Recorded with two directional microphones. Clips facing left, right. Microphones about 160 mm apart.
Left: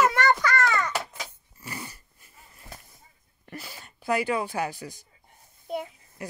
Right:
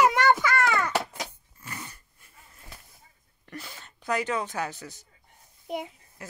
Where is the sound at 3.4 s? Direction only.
5° left (ahead or behind).